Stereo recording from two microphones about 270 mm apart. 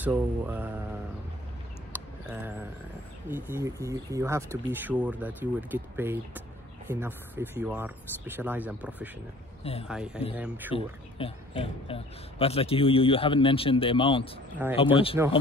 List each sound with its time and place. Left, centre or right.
0.0 s speech: centre
2.2 s speech: centre
9.6 s speech: left
9.8 s speech: centre
10.7 s speech: centre